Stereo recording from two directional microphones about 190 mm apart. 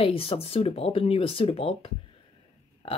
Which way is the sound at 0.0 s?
30° left (ahead or behind).